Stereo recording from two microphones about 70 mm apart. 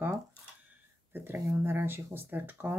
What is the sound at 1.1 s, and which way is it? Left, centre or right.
Speech, right.